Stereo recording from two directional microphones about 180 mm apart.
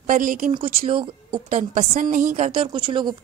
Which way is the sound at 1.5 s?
40° right (ahead or behind).